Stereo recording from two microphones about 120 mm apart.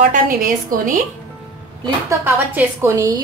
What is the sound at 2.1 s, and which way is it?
A woman's voice, 20° right (ahead or behind).